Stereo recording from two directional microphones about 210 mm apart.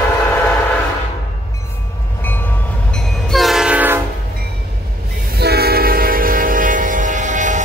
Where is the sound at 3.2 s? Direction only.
Centre (ahead or behind).